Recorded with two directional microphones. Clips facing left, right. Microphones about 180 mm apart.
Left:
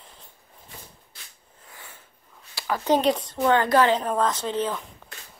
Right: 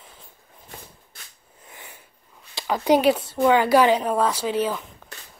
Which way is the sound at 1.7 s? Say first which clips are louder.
Right 2 dB; 20° right (ahead or behind).